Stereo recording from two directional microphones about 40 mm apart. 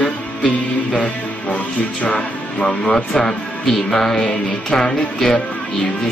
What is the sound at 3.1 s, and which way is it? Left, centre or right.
Music, centre.